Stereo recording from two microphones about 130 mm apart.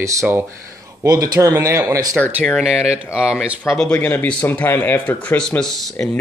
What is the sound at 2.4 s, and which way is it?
Speech, 5° right (ahead or behind).